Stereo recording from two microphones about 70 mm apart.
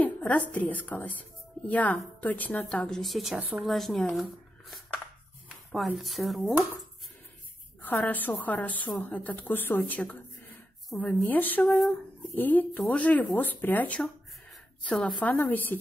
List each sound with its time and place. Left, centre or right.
0.0 s a woman's voice: left
2.7 s speech: centre
3.3 s speech: right
3.6 s speech: centre
5.8 s speech: centre
7.8 s a woman's voice: left
11.2 s a woman's voice: left
11.6 s speech: centre
12.4 s a woman's voice: left
14.9 s speech: centre
15.2 s a woman's voice: left